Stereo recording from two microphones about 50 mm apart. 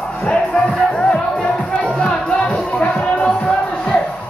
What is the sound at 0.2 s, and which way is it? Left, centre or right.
Music, centre.